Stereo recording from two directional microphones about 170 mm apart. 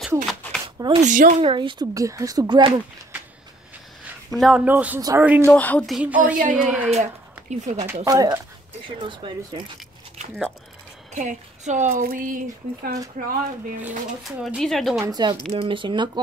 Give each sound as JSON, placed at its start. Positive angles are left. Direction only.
{"t": 0.3, "sound": "a sound", "side_deg": 5}
{"t": 0.7, "sound": "speech", "side_deg": -30}
{"t": 1.0, "sound": "speech", "side_deg": -50}
{"t": 1.4, "sound": "speech", "side_deg": -30}
{"t": 4.3, "sound": "speech", "side_deg": 0}
{"t": 5.5, "sound": "speech", "side_deg": 10}
{"t": 6.2, "sound": "speech", "side_deg": -50}
{"t": 6.5, "sound": "speech", "side_deg": -5}
{"t": 6.9, "sound": "speech", "side_deg": -40}
{"t": 7.8, "sound": "speech", "side_deg": -20}
{"t": 11.1, "sound": "speech", "side_deg": -45}
{"t": 11.9, "sound": "speech", "side_deg": -55}
{"t": 13.7, "sound": "speech", "side_deg": -5}
{"t": 15.0, "sound": "speech", "side_deg": -25}